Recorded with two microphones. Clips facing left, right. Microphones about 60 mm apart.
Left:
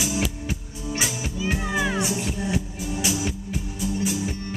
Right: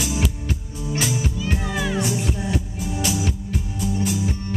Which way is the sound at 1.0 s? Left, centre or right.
Centre.